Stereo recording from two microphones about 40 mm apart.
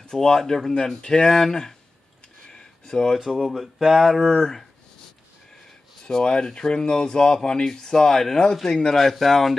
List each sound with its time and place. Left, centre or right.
0.0 s speech: centre
0.7 s speech: centre
2.5 s a sound: centre
3.2 s speech: centre
6.0 s speech: left
8.9 s speech: centre